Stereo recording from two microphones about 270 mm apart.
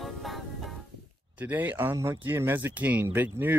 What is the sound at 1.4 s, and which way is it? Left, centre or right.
Speech, centre.